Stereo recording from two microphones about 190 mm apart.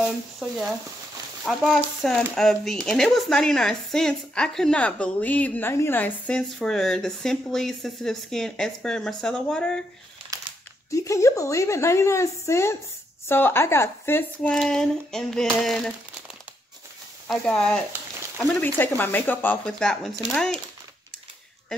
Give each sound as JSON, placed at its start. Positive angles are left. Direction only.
{"t": 0.0, "sound": "speech", "side_deg": 0}
{"t": 10.3, "sound": "a sound", "side_deg": -15}
{"t": 10.9, "sound": "speech", "side_deg": 15}
{"t": 17.3, "sound": "speech", "side_deg": 5}